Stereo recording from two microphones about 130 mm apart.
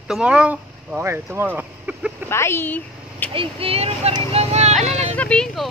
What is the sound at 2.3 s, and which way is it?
A woman's voice, 20° left (ahead or behind).